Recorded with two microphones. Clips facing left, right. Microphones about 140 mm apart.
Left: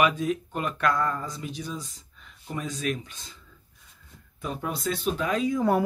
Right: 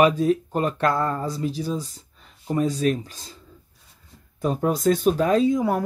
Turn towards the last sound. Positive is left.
turn(degrees=-35)  # may be behind; listen again after turning